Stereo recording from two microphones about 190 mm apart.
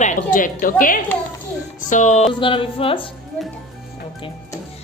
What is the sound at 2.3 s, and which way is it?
Speech, 25° left (ahead or behind).